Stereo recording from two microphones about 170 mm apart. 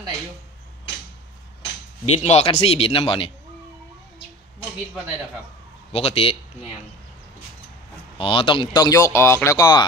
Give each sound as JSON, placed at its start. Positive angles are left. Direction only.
{"t": 2.0, "sound": "a man's voice", "side_deg": 40}
{"t": 5.9, "sound": "a man's voice", "side_deg": 35}
{"t": 8.2, "sound": "speech", "side_deg": 30}